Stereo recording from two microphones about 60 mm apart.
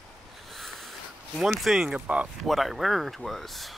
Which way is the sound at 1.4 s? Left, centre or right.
Centre.